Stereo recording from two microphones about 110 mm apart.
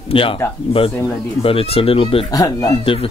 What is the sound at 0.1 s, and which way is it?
Speech, 55° left (ahead or behind).